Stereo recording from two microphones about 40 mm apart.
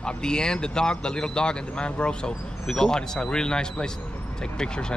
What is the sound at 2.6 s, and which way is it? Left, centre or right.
A man's voice, centre.